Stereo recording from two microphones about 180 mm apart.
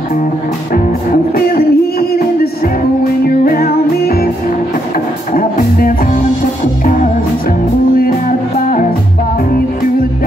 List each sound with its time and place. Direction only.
0.7 s music: 50° left (ahead or behind)
5.3 s music: 50° left (ahead or behind)
7.9 s music: 50° left (ahead or behind)